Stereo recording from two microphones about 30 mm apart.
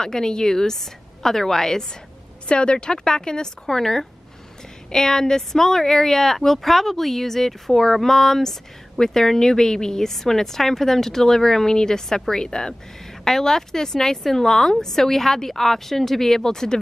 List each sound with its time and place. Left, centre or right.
0.0 s speech: left
2.4 s speech: left; by 16.7 s centre